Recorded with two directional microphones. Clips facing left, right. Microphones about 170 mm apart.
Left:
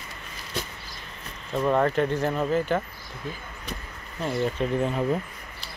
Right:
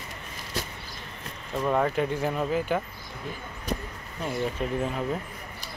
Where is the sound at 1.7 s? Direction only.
5° right (ahead or behind).